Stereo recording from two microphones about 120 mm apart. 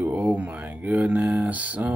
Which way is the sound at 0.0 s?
15° right (ahead or behind).